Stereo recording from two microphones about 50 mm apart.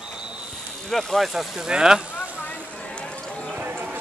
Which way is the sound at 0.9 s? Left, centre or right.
Centre.